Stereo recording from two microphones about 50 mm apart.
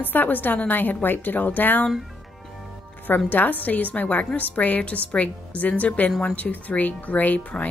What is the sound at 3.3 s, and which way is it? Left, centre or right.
A woman's voice, left.